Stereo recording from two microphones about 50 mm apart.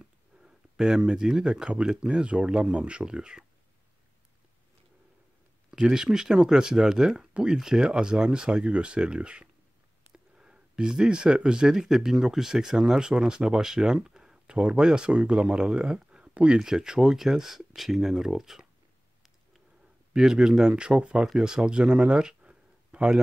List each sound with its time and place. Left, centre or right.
0.0 s speech: centre
5.7 s speech: centre
20.2 s speech: centre